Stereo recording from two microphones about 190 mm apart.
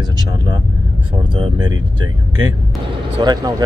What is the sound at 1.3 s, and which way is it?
Speech, 25° right (ahead or behind).